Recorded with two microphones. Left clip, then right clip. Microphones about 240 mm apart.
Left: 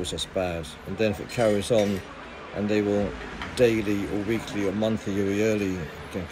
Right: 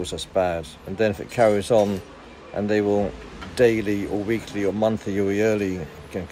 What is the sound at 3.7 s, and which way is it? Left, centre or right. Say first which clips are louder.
Speech: right 3 dB; right.